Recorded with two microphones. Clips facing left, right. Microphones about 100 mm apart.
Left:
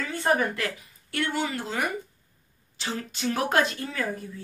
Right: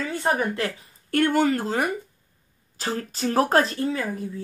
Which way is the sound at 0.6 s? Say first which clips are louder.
Right 3 dB; 40° right (ahead or behind).